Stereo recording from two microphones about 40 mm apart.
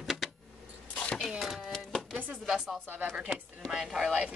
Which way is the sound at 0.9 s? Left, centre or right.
Centre.